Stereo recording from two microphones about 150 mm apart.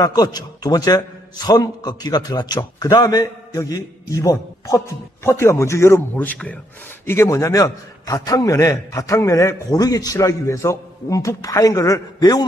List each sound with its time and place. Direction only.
0.0 s a man's voice: 25° left (ahead or behind)